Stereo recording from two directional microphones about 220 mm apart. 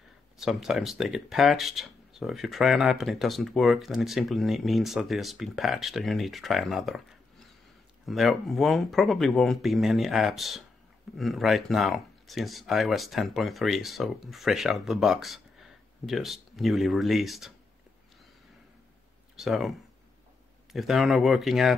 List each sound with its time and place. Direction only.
0.4 s speech: centre (ahead or behind)
19.3 s speech: centre (ahead or behind)
20.7 s speech: centre (ahead or behind)